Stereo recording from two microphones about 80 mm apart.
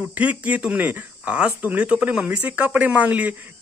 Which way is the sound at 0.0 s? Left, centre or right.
Centre.